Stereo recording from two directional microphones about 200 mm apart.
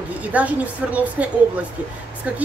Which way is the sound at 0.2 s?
5° right (ahead or behind).